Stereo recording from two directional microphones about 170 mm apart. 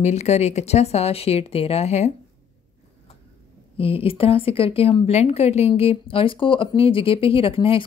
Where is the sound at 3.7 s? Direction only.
35° left (ahead or behind).